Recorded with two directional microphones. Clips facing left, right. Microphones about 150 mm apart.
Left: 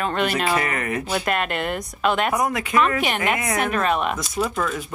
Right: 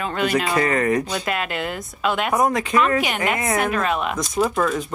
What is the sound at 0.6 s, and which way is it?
Speech, 30° right (ahead or behind).